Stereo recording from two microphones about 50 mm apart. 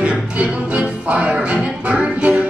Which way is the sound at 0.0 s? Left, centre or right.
Right.